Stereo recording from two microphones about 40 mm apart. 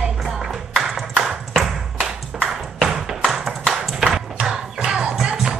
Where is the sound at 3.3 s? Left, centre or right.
Centre.